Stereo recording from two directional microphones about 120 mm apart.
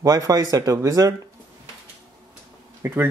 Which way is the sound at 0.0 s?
30° right (ahead or behind).